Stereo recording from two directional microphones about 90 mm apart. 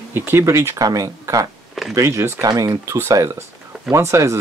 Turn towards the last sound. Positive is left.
turn(degrees=-35)  # may be behind; listen again after turning